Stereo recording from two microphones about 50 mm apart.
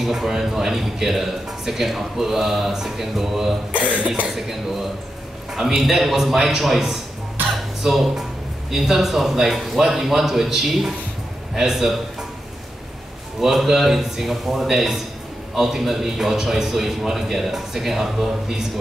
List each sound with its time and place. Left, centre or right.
0.0 s speech: centre
3.7 s cough: right
5.5 s a man's voice: centre
13.4 s speech: centre